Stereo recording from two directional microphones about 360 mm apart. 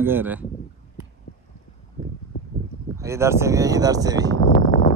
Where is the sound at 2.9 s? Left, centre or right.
Centre.